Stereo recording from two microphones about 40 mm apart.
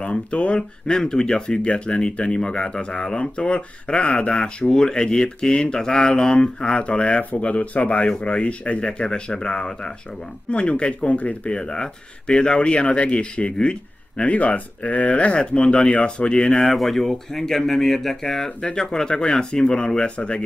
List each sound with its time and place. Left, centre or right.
0.0 s speech: left
10.5 s speech: left
11.5 s speech: centre
16.6 s speech: centre; by 20.4 s left